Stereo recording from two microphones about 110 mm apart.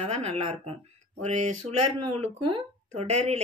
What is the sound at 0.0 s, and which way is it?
A woman's voice, 85° right.